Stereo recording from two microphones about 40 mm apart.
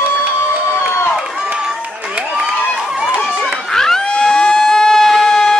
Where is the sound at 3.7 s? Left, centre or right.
Centre.